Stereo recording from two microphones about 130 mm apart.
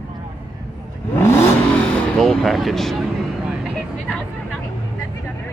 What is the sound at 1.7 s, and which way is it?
Vehicle, 5° left (ahead or behind).